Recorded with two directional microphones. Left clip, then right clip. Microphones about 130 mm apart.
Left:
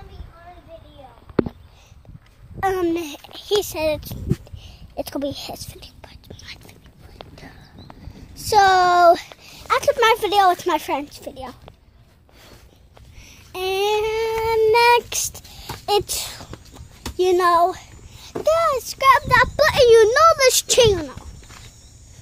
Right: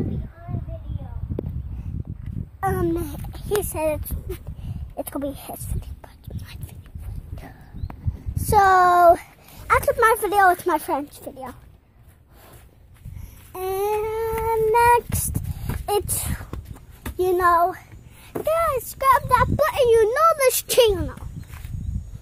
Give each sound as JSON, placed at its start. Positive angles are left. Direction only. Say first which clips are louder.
{"t": 2.6, "sound": "a child's voice", "louder": "left 3 dB", "side_deg": 20}
{"t": 8.5, "sound": "a woman's voice", "louder": "left 1 dB", "side_deg": 5}
{"t": 13.5, "sound": "child singing", "louder": "left 3 dB", "side_deg": 15}
{"t": 15.3, "sound": "a sound", "louder": "left 1 dB", "side_deg": 5}
{"t": 18.4, "sound": "a child's voice", "louder": "left 3 dB", "side_deg": 5}
{"t": 19.4, "sound": "a child's voice", "louder": "left 4 dB", "side_deg": 20}
{"t": 20.6, "sound": "a woman's voice", "louder": "right 1 dB", "side_deg": 0}
{"t": 20.9, "sound": "a child's voice", "louder": "left 3 dB", "side_deg": 10}